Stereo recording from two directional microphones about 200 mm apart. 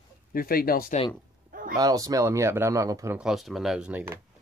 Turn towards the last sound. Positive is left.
turn(degrees=-10)  # may be behind; listen again after turning